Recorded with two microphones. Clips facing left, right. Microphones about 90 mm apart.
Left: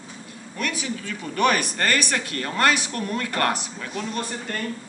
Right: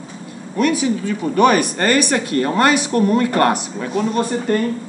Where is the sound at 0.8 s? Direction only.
20° right (ahead or behind).